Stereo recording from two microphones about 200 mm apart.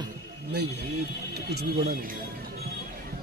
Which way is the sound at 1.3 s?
55° right (ahead or behind).